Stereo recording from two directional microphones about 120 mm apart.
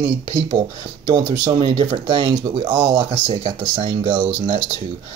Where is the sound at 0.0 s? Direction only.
45° right (ahead or behind).